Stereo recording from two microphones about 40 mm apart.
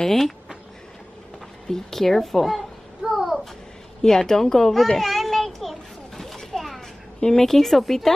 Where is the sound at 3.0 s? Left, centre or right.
Centre.